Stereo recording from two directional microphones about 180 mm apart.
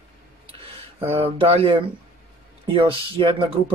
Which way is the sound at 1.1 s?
35° right (ahead or behind).